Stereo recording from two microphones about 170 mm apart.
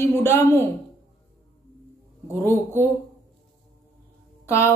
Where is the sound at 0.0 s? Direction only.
15° left (ahead or behind).